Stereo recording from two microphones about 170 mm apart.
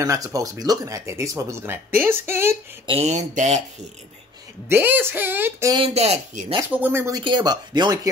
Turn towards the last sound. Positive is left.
turn(degrees=-25)  # may be behind; listen again after turning